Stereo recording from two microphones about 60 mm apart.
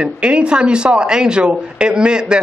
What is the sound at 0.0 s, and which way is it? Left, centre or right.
Speech, centre.